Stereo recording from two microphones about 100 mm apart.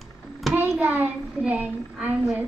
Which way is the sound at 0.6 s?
20° right (ahead or behind).